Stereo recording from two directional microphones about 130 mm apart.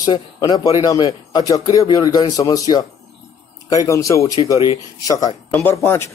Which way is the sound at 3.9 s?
25° left (ahead or behind).